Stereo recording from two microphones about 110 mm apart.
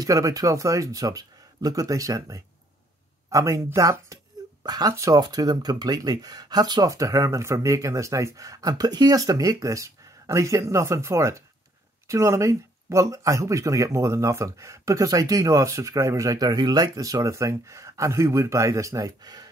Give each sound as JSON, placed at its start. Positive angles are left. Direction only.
{"t": 0.0, "sound": "speech", "side_deg": -30}